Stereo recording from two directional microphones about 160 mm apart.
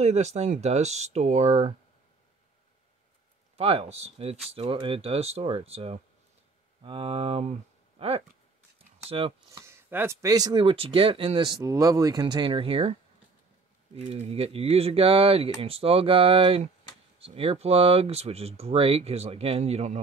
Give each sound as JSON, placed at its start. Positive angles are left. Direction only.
{"t": 0.0, "sound": "speech", "side_deg": -45}
{"t": 3.5, "sound": "speech", "side_deg": -40}
{"t": 8.7, "sound": "a sound", "side_deg": -35}
{"t": 9.7, "sound": "speech", "side_deg": -15}
{"t": 13.9, "sound": "speech", "side_deg": -45}